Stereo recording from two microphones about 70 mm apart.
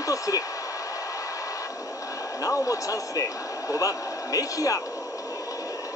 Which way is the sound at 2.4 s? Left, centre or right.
Left.